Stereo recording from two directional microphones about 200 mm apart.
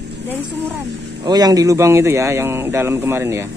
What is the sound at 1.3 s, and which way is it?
Speech, 20° right (ahead or behind).